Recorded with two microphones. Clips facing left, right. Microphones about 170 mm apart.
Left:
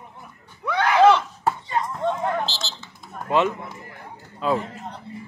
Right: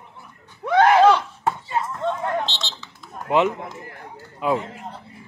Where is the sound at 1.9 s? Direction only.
10° left (ahead or behind).